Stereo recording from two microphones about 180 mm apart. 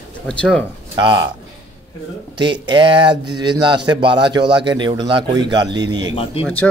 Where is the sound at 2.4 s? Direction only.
25° right (ahead or behind).